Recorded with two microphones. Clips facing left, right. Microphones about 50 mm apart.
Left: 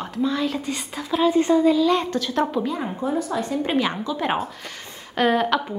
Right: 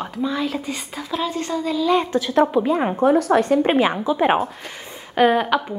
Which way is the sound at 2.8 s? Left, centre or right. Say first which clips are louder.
Right 8 dB; right.